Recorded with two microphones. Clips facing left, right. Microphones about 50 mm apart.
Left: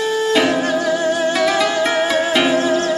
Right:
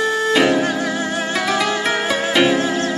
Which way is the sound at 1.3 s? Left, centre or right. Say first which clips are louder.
Left 3 dB; centre.